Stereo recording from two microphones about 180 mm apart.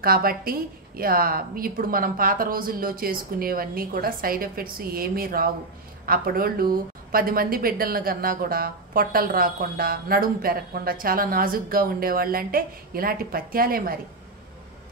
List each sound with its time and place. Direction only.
0.0 s a woman's voice: 55° right (ahead or behind)